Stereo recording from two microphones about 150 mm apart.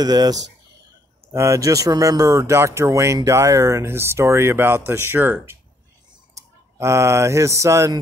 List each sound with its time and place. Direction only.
0.0 s speech: 25° right (ahead or behind)